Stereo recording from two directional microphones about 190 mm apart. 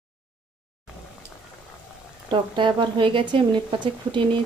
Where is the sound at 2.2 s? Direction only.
25° right (ahead or behind).